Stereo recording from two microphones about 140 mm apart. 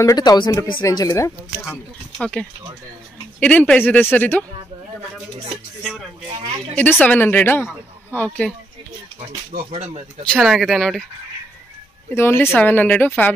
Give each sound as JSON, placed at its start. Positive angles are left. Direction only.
{"t": 0.0, "sound": "speech", "side_deg": 25}
{"t": 2.1, "sound": "a woman's voice", "side_deg": 5}
{"t": 6.7, "sound": "a woman's voice", "side_deg": 10}
{"t": 9.7, "sound": "speech", "side_deg": -50}
{"t": 10.3, "sound": "speech", "side_deg": 0}
{"t": 12.1, "sound": "a woman's voice", "side_deg": 15}